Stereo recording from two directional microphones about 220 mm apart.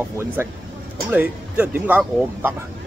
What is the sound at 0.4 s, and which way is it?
Speech, 10° right (ahead or behind).